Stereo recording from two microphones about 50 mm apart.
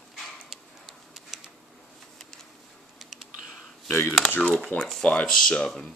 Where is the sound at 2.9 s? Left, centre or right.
Centre.